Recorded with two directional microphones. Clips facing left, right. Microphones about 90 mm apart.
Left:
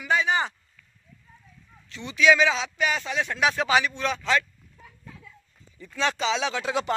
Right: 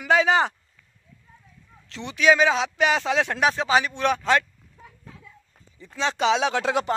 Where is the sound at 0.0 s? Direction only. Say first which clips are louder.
Right 5 dB; 90° right.